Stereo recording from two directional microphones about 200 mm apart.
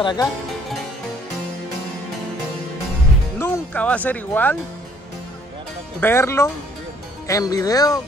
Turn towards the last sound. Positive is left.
turn(degrees=15)  # may be behind; listen again after turning